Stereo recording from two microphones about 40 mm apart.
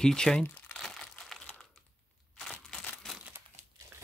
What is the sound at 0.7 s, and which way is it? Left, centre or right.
Crumpling, centre.